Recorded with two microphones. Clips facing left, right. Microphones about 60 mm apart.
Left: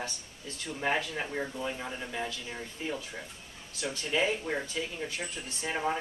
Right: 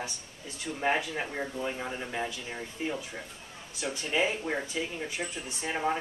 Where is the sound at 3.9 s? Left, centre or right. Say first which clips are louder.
Even; centre.